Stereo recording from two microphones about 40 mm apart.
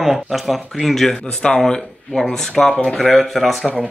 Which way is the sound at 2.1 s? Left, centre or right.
Centre.